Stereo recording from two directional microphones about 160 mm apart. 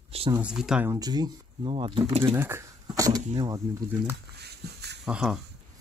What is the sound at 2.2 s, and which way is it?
Speech, 15° right (ahead or behind).